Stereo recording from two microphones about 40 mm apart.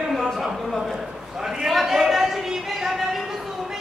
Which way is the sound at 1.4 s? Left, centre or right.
Centre.